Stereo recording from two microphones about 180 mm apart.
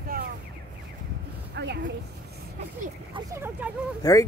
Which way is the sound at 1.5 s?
70° right (ahead or behind).